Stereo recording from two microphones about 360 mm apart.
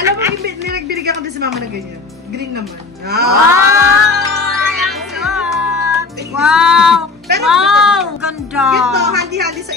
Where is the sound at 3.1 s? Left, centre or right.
Right.